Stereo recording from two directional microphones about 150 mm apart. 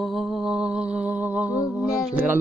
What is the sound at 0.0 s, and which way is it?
Music, centre (ahead or behind).